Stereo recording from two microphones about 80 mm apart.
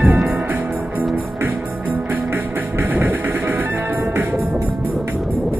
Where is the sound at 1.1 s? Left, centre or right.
Right.